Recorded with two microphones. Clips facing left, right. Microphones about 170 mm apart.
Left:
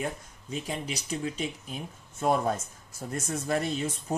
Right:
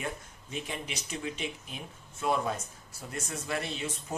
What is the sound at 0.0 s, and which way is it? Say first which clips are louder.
Speech: left 4 dB; 35° left (ahead or behind).